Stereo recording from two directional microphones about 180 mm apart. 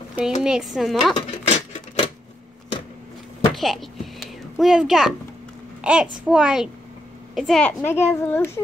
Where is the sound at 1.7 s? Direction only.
35° left (ahead or behind).